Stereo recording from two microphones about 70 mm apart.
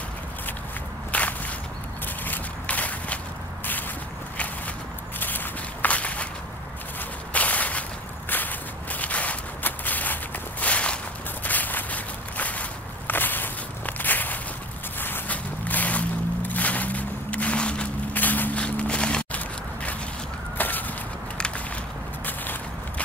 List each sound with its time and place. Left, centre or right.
1.1 s walk: left
2.2 s a sound: left
5.2 s walk: left
7.3 s whip: left
8.3 s walk: left
18.1 s walk: left
22.2 s walk: left